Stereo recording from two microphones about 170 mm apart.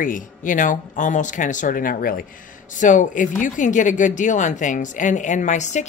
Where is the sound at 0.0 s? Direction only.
50° left (ahead or behind).